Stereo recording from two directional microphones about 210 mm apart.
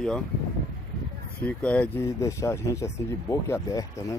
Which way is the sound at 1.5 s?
5° left (ahead or behind).